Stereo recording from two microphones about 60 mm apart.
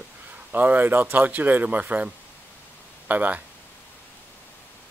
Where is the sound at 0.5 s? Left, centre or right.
Right.